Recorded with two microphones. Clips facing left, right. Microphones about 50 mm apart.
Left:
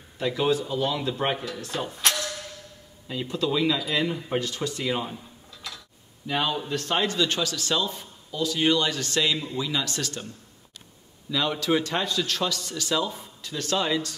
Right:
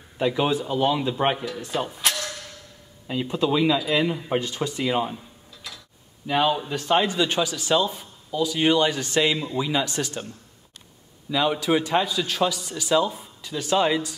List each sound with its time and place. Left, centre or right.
0.2 s speech: centre
1.3 s a man's voice: centre
3.1 s a man's voice: centre
11.2 s a man's voice: centre